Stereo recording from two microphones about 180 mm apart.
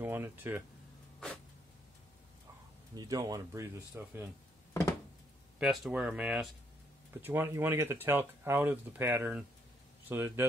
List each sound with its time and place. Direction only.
0.0 s speech: 10° right (ahead or behind)
3.0 s speech: 20° right (ahead or behind)
5.6 s speech: 5° right (ahead or behind)